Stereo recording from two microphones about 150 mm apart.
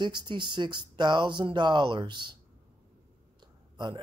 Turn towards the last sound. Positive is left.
turn(degrees=-30)  # may be behind; listen again after turning